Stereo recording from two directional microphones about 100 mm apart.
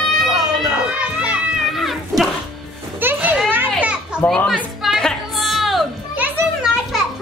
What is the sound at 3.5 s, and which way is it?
Children playing, 15° right (ahead or behind).